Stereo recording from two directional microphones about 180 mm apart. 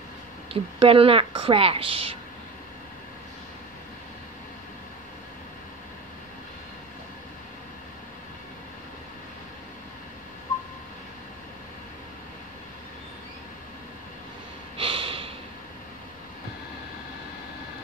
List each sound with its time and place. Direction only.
0.5 s a woman's voice: 30° right (ahead or behind)
14.8 s snort: 30° right (ahead or behind)